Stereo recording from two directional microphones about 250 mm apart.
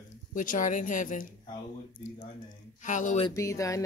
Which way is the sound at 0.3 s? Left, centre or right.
Left.